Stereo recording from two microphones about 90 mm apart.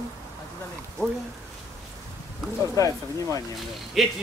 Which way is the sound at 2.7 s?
40° left (ahead or behind).